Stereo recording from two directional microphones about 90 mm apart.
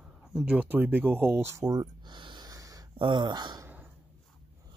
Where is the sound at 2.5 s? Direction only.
40° right (ahead or behind).